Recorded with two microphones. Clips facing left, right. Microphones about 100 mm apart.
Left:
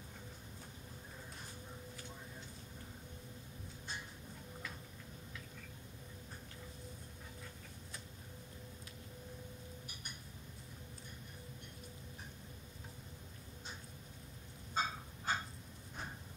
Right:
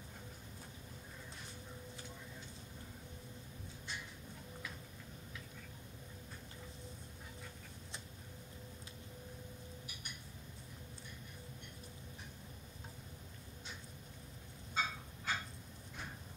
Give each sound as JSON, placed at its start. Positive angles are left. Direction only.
{"t": 14.7, "sound": "fowl", "side_deg": 40}